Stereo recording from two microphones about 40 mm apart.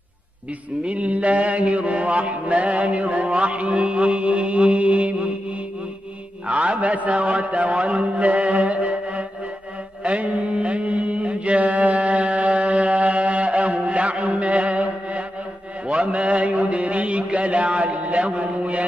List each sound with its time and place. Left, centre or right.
0.8 s mantra: right
6.4 s a man's voice: right
10.0 s mantra: right
15.9 s a sound: right